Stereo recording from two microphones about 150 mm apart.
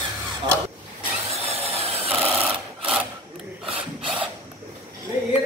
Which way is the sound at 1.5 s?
40° right (ahead or behind).